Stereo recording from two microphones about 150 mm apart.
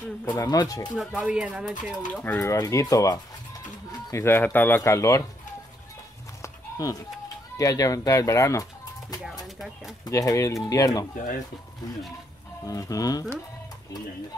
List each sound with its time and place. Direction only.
0.4 s speech: 25° left (ahead or behind)
1.1 s speech: 5° right (ahead or behind)
2.2 s speech: 15° left (ahead or behind)
2.5 s speech: 25° left (ahead or behind)
6.4 s a sound: 25° left (ahead or behind)
7.5 s speech: 25° left (ahead or behind)
10.0 s speech: 20° left (ahead or behind)
12.6 s speech: 25° left (ahead or behind)